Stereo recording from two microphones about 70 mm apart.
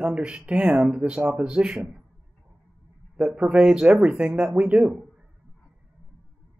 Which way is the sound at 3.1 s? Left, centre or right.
Centre.